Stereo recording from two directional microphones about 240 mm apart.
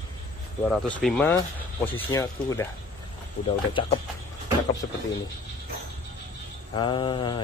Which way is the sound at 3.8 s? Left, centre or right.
Left.